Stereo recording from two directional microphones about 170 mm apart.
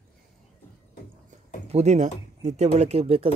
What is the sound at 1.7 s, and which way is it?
Speech, 40° right (ahead or behind).